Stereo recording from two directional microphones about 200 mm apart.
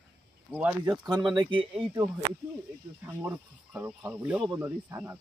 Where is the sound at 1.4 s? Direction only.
25° right (ahead or behind).